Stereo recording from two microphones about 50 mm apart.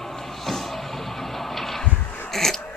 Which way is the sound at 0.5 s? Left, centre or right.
Centre.